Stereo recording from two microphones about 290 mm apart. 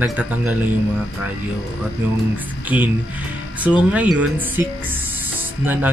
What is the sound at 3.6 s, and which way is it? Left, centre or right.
Speech, centre.